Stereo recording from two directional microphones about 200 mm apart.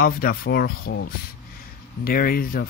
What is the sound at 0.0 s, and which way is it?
Speech, 45° left (ahead or behind).